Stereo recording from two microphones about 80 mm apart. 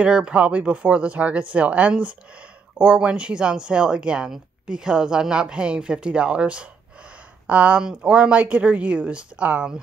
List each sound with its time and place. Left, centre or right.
0.0 s speech: centre